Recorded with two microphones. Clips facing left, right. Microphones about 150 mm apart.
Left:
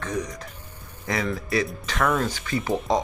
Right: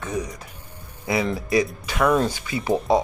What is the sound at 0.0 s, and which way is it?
Speech, 10° right (ahead or behind).